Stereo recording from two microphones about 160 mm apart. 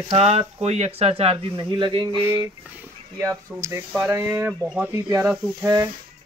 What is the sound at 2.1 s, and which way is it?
Speech, 15° right (ahead or behind).